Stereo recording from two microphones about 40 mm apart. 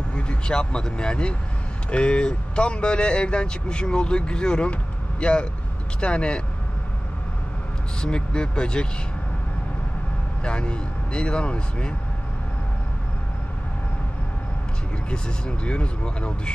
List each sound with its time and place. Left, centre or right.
0.1 s speech: left
8.0 s speech: left
10.4 s speech: left
15.0 s speech: left